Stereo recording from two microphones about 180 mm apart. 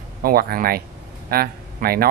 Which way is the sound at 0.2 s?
55° right (ahead or behind).